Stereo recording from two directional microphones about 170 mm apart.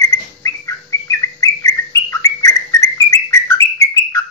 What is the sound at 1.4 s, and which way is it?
Bird, 20° left (ahead or behind).